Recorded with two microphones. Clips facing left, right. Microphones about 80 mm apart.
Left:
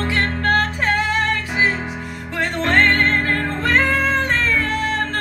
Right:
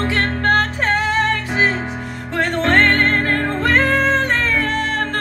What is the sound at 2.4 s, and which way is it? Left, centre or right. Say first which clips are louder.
Music: right 2 dB; right.